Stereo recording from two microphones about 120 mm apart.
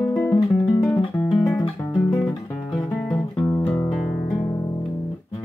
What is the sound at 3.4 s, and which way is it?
Music, 20° left (ahead or behind).